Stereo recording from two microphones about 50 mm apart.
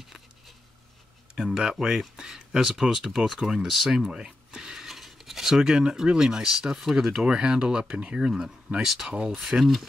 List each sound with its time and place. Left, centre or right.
1.3 s speech: centre
8.2 s speech: centre
9.1 s speech: right
9.4 s speech: centre